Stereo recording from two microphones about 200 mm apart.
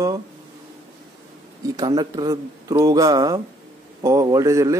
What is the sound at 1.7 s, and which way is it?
Speech, 20° right (ahead or behind).